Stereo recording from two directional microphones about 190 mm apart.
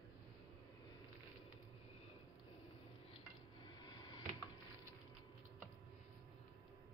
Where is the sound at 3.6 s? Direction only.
25° left (ahead or behind).